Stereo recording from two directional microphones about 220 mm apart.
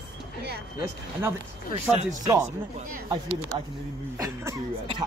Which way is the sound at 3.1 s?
25° right (ahead or behind).